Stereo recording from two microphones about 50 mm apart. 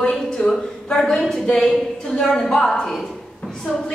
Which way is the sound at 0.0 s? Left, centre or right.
Centre.